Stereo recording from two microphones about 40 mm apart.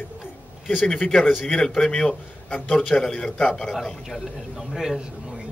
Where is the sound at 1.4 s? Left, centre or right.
Centre.